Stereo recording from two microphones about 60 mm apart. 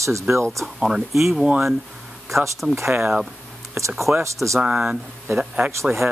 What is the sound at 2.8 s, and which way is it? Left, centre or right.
Speech, right.